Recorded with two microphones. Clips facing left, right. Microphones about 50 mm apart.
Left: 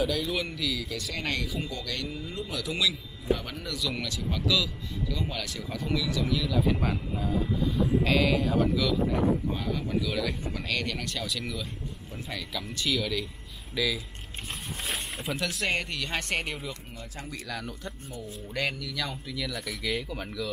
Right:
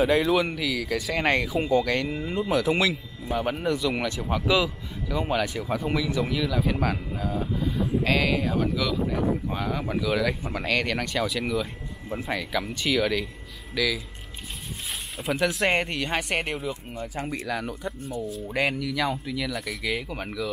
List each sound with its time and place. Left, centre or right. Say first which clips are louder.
0.0 s speech: right 7 dB; right
0.6 s speech: right 5 dB; centre
6.4 s speech: right 2 dB; centre
9.5 s speech: right 2 dB; centre
13.7 s speech: right 3 dB; centre
14.9 s snake: right 4 dB; centre
15.6 s speech: right 6 dB; right
16.1 s speech: right 4 dB; centre